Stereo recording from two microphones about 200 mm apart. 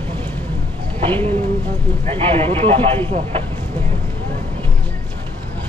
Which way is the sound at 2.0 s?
30° right (ahead or behind).